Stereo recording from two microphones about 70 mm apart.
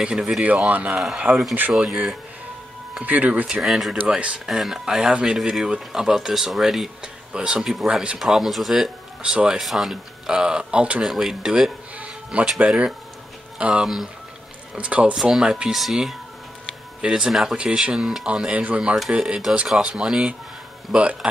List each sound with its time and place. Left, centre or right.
0.0 s speech: centre
3.1 s speech: right
3.6 s speech: centre
4.1 s speech: centre
4.5 s speech: centre
7.0 s speech: centre
8.2 s speech: centre
9.6 s speech: centre
12.0 s a sound: centre
12.5 s speech: centre
17.6 s speech: centre